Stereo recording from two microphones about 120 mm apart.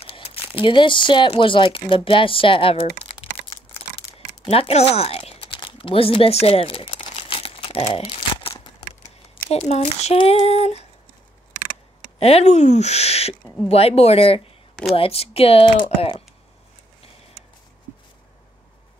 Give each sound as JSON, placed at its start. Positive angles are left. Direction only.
{"t": 0.0, "sound": "speech", "side_deg": 55}
{"t": 4.0, "sound": "a sound", "side_deg": 45}
{"t": 4.5, "sound": "a sound", "side_deg": 55}
{"t": 9.4, "sound": "speech", "side_deg": 60}
{"t": 10.1, "sound": "speech", "side_deg": 50}
{"t": 12.2, "sound": "speech", "side_deg": 60}